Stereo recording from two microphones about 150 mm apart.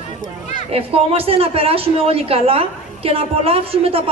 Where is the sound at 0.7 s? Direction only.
40° right (ahead or behind).